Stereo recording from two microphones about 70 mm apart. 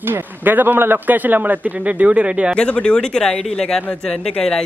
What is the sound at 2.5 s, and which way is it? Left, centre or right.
Speech, centre.